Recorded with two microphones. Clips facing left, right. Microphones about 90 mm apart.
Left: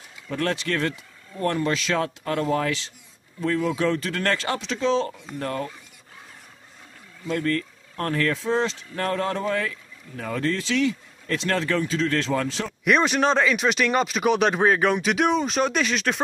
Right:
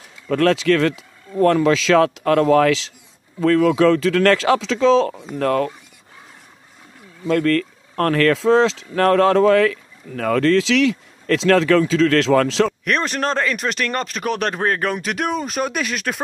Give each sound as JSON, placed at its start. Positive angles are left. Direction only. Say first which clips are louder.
{"t": 0.3, "sound": "speech", "louder": "right 10 dB", "side_deg": -90}
{"t": 7.2, "sound": "speech", "louder": "right 8 dB", "side_deg": -90}
{"t": 12.8, "sound": "speech", "louder": "left 1 dB", "side_deg": 5}